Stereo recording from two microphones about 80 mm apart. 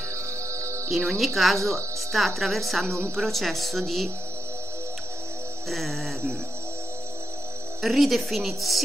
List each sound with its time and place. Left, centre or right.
0.1 s music: right
0.8 s speech: centre
1.6 s speech: right
2.1 s speech: centre
5.7 s speech: centre
7.8 s speech: centre